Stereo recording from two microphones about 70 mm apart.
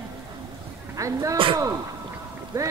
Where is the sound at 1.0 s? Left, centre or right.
Right.